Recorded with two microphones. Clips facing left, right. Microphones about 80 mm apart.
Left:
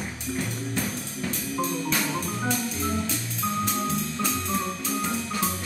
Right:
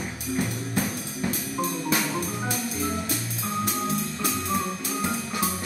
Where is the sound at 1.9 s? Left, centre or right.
Centre.